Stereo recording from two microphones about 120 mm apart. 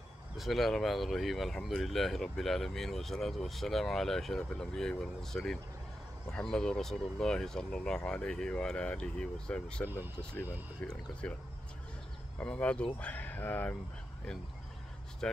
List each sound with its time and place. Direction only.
0.4 s speech: centre (ahead or behind)
9.8 s speech: 15° right (ahead or behind)
10.9 s speech: 10° left (ahead or behind)
12.4 s speech: 10° left (ahead or behind)